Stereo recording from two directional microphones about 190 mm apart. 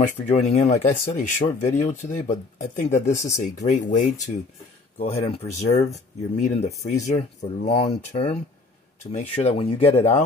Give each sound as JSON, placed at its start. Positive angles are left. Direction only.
{"t": 0.5, "sound": "speech", "side_deg": 40}